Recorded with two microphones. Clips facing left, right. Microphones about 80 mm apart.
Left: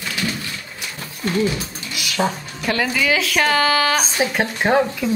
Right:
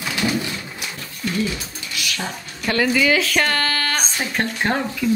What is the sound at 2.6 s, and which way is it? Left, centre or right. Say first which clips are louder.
A woman's voice: right 2 dB; centre.